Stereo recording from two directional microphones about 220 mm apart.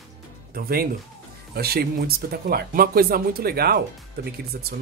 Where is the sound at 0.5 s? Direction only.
45° right (ahead or behind).